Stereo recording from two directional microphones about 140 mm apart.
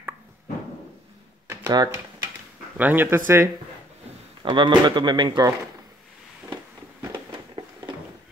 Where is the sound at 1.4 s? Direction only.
25° right (ahead or behind).